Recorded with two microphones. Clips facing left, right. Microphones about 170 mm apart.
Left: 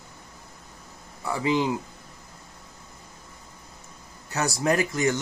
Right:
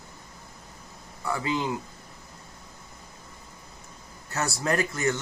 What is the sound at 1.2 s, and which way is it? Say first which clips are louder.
Speech: left 4 dB; 20° left (ahead or behind).